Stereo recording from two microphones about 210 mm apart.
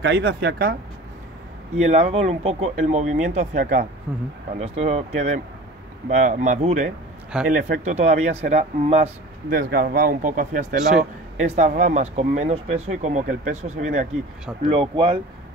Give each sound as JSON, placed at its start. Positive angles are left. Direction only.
{"t": 0.0, "sound": "speech", "side_deg": -55}
{"t": 1.8, "sound": "speech", "side_deg": -30}
{"t": 4.1, "sound": "speech", "side_deg": -5}
{"t": 4.6, "sound": "speech", "side_deg": -30}
{"t": 9.5, "sound": "speech", "side_deg": -45}
{"t": 14.7, "sound": "speech", "side_deg": -25}